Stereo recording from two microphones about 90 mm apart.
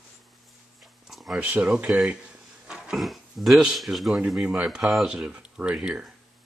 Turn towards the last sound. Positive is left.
turn(degrees=-10)  # may be behind; listen again after turning